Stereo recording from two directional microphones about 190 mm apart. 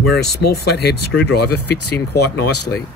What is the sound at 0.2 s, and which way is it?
Speech, 55° left (ahead or behind).